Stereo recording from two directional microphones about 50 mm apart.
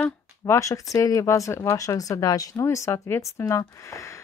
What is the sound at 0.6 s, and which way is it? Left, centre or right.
Speech, left.